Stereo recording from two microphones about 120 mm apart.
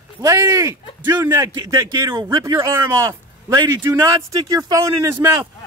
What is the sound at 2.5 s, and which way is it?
A man's voice, 20° right (ahead or behind).